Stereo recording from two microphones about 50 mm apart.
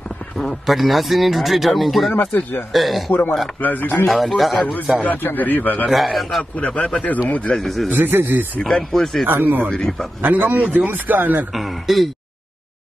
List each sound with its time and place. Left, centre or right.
0.4 s speech: centre
3.6 s a man's voice: left
4.1 s speech: centre
5.0 s a man's voice: left
5.9 s speech: centre
6.5 s a man's voice: left
7.5 s speech: centre
7.9 s a man's voice: right
8.6 s speech: centre
9.3 s a man's voice: right
9.7 s a man's voice: centre
10.2 s a man's voice: right
11.5 s speech: centre